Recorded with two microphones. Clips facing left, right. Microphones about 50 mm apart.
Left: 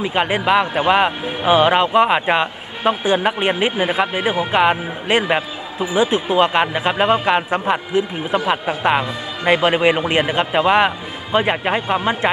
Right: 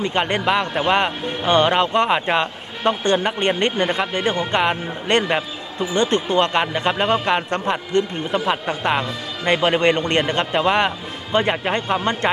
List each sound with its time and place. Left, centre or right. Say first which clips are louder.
0.0 s speech: left 2 dB; centre